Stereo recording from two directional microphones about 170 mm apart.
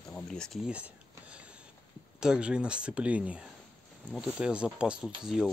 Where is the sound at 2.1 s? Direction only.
5° right (ahead or behind).